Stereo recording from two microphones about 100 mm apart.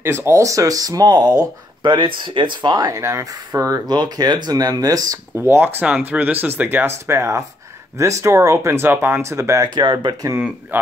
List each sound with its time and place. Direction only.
0.0 s speech: 25° right (ahead or behind)
3.9 s speech: 45° right (ahead or behind); by 9.7 s 30° right (ahead or behind)
9.8 s speech: 50° right (ahead or behind)
10.7 s speech: 20° right (ahead or behind)